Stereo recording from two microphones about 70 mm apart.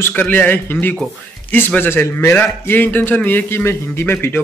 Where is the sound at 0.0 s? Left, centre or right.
Left.